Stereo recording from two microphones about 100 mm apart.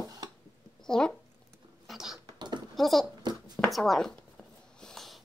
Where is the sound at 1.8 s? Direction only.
5° right (ahead or behind).